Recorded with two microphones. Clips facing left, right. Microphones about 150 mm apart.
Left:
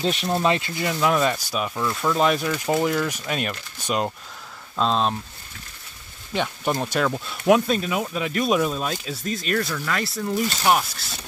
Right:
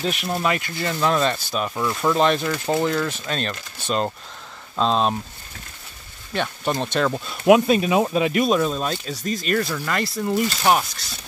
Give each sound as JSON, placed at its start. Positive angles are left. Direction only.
{"t": 0.0, "sound": "speech", "side_deg": 30}
{"t": 0.9, "sound": "speech", "side_deg": 10}
{"t": 1.8, "sound": "speech", "side_deg": -15}
{"t": 2.1, "sound": "speech", "side_deg": 5}
{"t": 4.7, "sound": "speech", "side_deg": 0}
{"t": 6.3, "sound": "speech", "side_deg": 15}
{"t": 7.9, "sound": "speech", "side_deg": -25}
{"t": 8.5, "sound": "speech", "side_deg": 5}